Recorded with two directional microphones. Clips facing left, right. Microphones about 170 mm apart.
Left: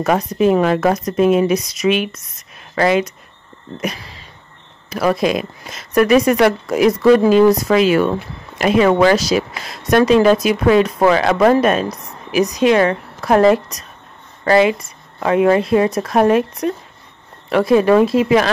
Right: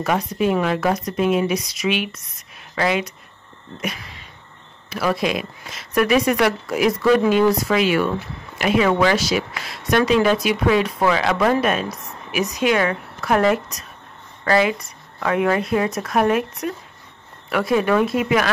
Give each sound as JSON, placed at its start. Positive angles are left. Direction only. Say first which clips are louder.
{"t": 0.0, "sound": "speech", "louder": "left 5 dB", "side_deg": 40}